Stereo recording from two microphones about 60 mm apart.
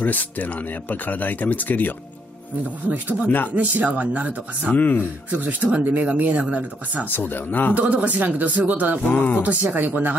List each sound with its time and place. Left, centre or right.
0.0 s speech: left
2.9 s speech: right
4.7 s speech: left
5.3 s speech: right
7.1 s speech: left
7.7 s speech: right
9.0 s speech: left
9.4 s speech: right